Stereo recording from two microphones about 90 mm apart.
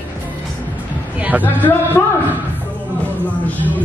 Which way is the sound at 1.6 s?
25° left (ahead or behind).